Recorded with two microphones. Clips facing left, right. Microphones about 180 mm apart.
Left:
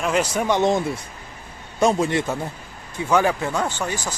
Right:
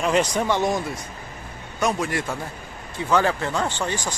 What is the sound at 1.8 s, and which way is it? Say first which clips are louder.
Speech: left 5 dB; 25° left (ahead or behind).